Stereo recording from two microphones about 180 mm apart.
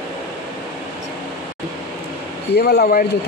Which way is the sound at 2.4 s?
65° left (ahead or behind).